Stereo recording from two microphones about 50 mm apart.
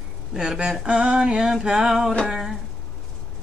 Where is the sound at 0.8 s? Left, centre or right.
Centre.